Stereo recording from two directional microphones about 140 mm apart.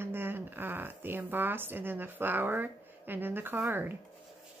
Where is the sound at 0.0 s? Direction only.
15° right (ahead or behind).